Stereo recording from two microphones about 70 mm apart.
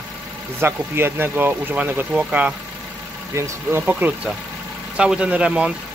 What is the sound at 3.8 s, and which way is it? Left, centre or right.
Speech, right.